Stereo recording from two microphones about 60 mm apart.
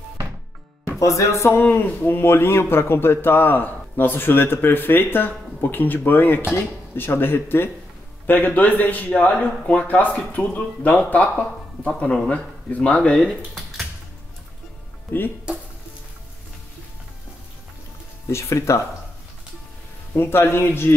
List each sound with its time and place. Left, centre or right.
0.9 s music: left
1.6 s a man's voice: left; by 13.3 s centre
13.3 s typing: centre
15.1 s speech: left
15.5 s a sound: centre
18.3 s a man's voice: left
20.2 s a man's voice: left